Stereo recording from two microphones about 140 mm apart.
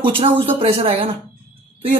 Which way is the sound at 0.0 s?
40° right (ahead or behind).